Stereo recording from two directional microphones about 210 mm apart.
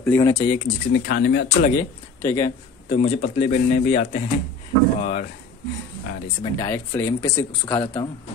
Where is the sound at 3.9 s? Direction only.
45° left (ahead or behind).